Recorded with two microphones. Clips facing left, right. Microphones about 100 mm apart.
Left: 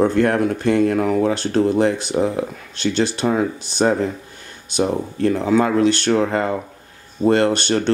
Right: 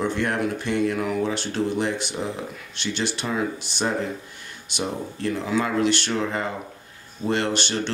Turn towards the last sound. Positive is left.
turn(degrees=45)  # may be behind; listen again after turning